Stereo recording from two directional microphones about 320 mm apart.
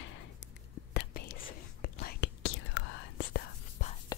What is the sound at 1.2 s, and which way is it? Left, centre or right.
Whispering, left.